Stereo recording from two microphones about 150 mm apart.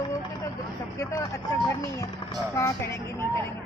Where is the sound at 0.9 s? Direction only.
25° left (ahead or behind).